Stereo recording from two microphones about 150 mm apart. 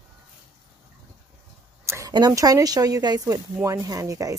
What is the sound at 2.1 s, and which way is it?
Speech, 25° right (ahead or behind).